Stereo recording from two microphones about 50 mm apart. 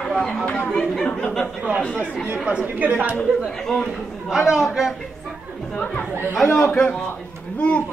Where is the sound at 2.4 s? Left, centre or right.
Right.